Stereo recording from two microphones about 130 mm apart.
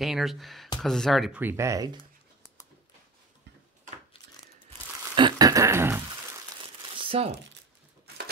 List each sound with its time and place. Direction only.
0.0 s speech: centre (ahead or behind)
1.4 s speech: 20° right (ahead or behind)
5.1 s a sound: 35° right (ahead or behind)
7.0 s crumpling: 45° right (ahead or behind)